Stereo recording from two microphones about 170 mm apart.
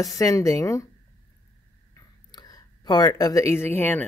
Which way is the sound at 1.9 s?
25° left (ahead or behind).